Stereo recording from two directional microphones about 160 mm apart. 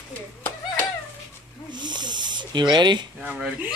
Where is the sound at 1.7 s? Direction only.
25° right (ahead or behind).